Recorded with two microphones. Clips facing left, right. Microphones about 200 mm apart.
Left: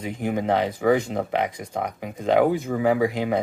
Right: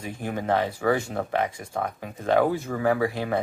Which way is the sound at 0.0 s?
15° left (ahead or behind).